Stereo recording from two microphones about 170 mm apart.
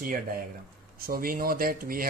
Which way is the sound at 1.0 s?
60° right (ahead or behind).